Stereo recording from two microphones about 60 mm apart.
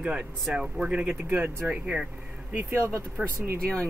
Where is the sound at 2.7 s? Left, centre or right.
Right.